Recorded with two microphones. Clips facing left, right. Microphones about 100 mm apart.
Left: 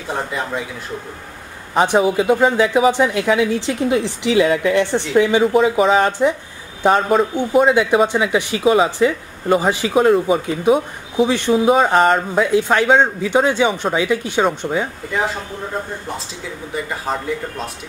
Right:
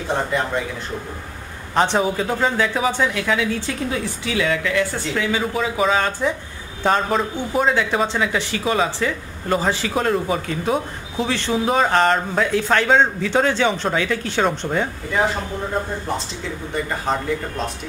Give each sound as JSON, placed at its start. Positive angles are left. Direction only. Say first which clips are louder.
{"t": 1.8, "sound": "a man's voice", "louder": "left 4 dB", "side_deg": 10}
{"t": 4.4, "sound": "a man's voice", "louder": "left 5 dB", "side_deg": 35}
{"t": 16.7, "sound": "speech", "louder": "even", "side_deg": 5}